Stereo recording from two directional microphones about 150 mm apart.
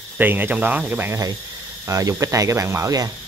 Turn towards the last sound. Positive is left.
turn(degrees=-20)  # may be behind; listen again after turning